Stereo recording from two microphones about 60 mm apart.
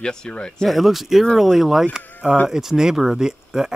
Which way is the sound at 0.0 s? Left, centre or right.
Centre.